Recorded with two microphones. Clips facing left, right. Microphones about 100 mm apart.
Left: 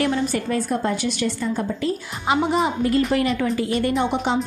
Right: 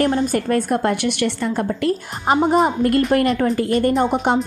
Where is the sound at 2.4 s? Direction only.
45° right (ahead or behind).